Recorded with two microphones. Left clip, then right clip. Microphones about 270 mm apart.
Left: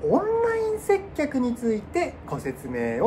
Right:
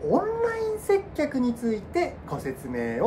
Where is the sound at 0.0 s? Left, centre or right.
Centre.